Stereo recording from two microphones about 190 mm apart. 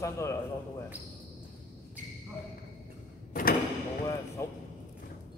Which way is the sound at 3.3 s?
50° left (ahead or behind).